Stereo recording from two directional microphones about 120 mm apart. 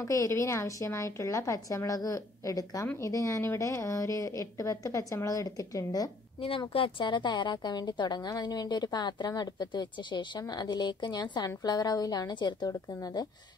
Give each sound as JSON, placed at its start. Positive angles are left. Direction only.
{"t": 0.0, "sound": "a woman's voice", "side_deg": 25}
{"t": 6.7, "sound": "a woman's voice", "side_deg": 45}